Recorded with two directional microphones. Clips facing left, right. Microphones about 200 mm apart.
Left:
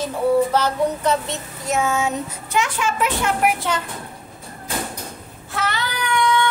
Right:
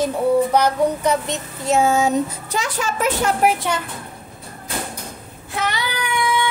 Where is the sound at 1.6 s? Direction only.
30° right (ahead or behind).